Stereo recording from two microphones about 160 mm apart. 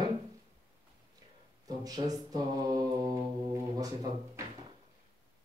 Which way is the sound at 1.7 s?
25° right (ahead or behind).